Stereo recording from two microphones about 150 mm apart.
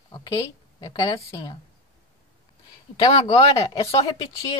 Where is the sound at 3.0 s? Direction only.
35° left (ahead or behind).